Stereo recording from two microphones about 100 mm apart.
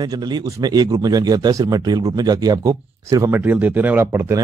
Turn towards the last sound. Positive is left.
turn(degrees=-25)  # may be behind; listen again after turning